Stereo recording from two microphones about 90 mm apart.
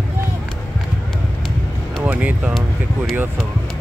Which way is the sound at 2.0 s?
15° right (ahead or behind).